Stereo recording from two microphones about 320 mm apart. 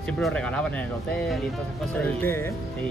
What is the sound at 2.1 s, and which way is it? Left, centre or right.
Speech, centre.